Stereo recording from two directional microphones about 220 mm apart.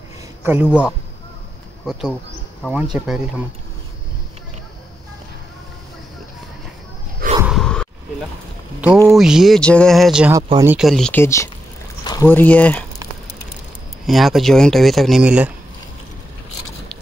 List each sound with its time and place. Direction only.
0.4 s a man's voice: 10° right (ahead or behind)
1.9 s speech: centre (ahead or behind)
7.4 s a sound: centre (ahead or behind)
9.0 s speech: centre (ahead or behind)
10.3 s speech: 15° right (ahead or behind); by 11.5 s 15° left (ahead or behind)
12.0 s a sound: 20° left (ahead or behind)
12.3 s speech: 5° left (ahead or behind)
14.0 s speech: centre (ahead or behind)